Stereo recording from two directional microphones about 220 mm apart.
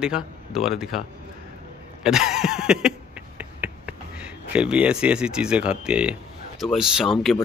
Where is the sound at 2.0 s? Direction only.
5° right (ahead or behind).